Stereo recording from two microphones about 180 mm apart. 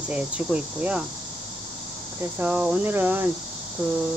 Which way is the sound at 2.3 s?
10° right (ahead or behind).